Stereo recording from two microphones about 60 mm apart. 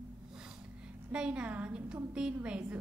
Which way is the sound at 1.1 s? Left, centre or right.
Centre.